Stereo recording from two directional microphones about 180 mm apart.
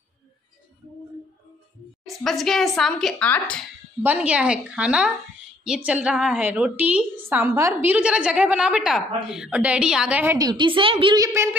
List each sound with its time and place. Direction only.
2.0 s speech: centre (ahead or behind)
4.0 s a woman's voice: 10° right (ahead or behind)
10.3 s a woman's voice: 25° right (ahead or behind)